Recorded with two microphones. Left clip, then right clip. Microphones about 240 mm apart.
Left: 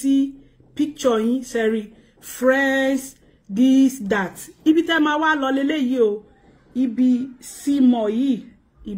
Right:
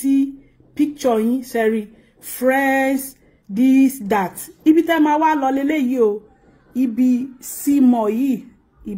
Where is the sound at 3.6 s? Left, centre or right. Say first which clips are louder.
Right 1 dB; centre.